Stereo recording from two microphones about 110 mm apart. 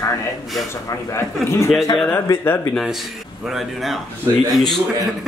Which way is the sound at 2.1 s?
20° left (ahead or behind).